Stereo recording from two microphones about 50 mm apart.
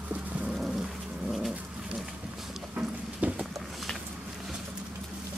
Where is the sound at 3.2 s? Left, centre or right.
Right.